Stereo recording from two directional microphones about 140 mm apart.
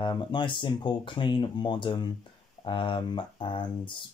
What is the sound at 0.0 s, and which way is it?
Speech, 35° left (ahead or behind).